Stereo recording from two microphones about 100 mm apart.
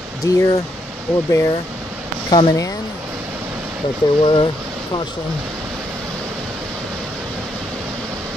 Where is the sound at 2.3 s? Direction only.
55° left (ahead or behind).